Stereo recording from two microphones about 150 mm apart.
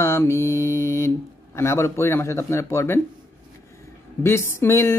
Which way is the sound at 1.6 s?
20° left (ahead or behind).